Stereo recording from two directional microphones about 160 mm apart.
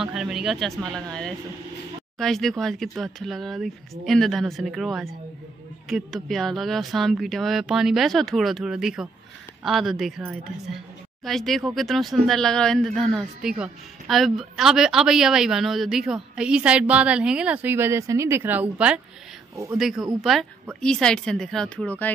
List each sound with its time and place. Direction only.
0.0 s speech: 5° right (ahead or behind)
19.5 s speech: 20° right (ahead or behind)
19.8 s speech: centre (ahead or behind)